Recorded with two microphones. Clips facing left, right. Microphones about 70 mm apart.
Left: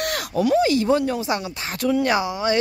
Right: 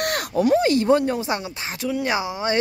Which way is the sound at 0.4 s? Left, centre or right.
Right.